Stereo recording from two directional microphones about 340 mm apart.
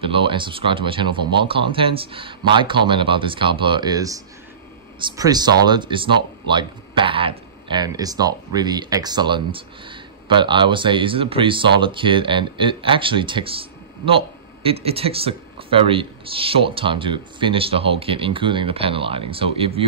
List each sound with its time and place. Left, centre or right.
0.0 s speech: centre